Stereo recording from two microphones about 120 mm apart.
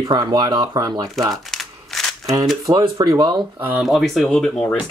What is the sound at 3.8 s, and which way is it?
Speech, centre (ahead or behind).